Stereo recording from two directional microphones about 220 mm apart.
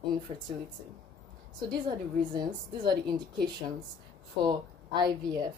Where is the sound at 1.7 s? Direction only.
20° right (ahead or behind).